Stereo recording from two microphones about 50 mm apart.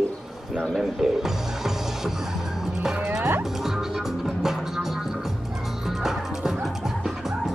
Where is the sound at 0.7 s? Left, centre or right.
Centre.